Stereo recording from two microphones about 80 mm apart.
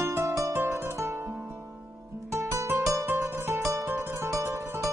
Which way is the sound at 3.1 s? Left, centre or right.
Right.